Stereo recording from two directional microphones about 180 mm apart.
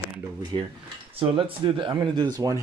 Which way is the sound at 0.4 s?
25° right (ahead or behind).